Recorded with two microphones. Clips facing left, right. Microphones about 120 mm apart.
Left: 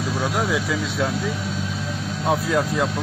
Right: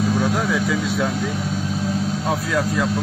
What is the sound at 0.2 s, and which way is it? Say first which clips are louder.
Speech: right 2 dB; 15° left (ahead or behind).